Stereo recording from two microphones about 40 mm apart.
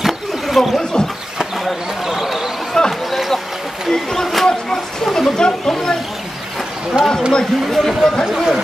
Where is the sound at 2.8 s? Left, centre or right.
Centre.